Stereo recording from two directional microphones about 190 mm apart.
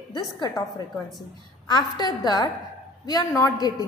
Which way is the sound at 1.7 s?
20° left (ahead or behind).